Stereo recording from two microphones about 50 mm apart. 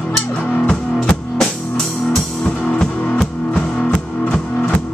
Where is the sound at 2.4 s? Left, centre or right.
Left.